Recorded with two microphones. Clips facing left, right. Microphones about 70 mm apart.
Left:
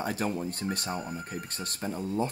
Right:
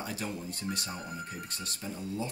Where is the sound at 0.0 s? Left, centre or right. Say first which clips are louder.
Left 7 dB; left.